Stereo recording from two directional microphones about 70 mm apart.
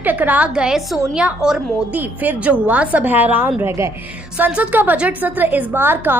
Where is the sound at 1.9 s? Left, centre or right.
Right.